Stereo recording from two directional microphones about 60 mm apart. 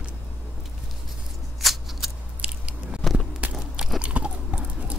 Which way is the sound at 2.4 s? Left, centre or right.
Centre.